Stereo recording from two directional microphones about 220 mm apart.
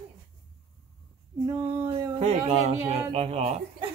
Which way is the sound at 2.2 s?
30° right (ahead or behind).